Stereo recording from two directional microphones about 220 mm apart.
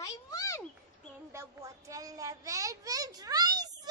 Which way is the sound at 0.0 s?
15° left (ahead or behind).